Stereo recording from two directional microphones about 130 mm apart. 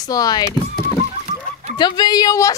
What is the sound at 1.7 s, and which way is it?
Speech, 35° left (ahead or behind).